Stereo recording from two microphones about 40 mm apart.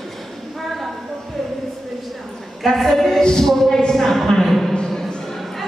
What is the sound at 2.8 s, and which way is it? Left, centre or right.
A woman's voice, centre.